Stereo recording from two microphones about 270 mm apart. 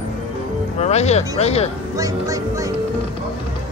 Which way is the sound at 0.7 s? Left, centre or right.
Left.